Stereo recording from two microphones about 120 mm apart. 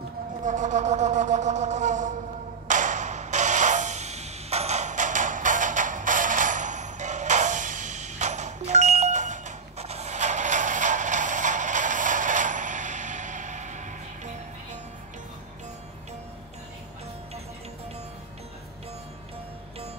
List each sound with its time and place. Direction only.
0.4 s wind instrument: 90° right
2.7 s music: 90° right